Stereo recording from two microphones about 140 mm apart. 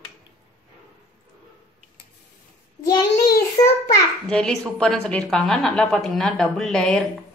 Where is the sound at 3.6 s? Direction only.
25° left (ahead or behind).